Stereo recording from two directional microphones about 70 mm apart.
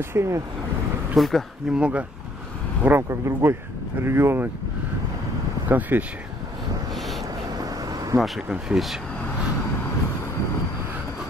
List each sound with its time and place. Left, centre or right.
0.1 s speech: right
1.1 s speech: centre
1.7 s speech: centre
2.8 s speech: right
3.1 s speech: right
5.7 s speech: right
7.6 s vehicle: right
8.5 s speech: centre